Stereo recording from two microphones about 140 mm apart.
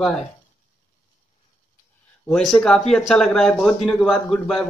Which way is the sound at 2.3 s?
5° left (ahead or behind).